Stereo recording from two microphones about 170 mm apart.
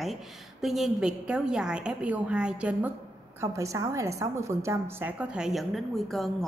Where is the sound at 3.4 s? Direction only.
20° right (ahead or behind).